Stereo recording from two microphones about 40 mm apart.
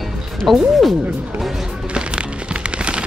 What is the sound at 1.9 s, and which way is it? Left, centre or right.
Music, right.